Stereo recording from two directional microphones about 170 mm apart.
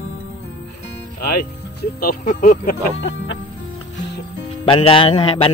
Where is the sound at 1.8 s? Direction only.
60° left (ahead or behind).